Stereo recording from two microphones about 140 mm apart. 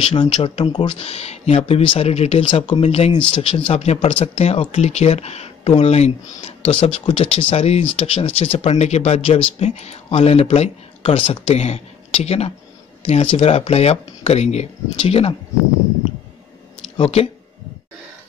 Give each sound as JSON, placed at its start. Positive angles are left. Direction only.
{"t": 0.0, "sound": "speech", "side_deg": 40}
{"t": 16.9, "sound": "speech", "side_deg": 45}